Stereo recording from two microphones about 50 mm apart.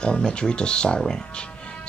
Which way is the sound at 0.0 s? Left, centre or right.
Centre.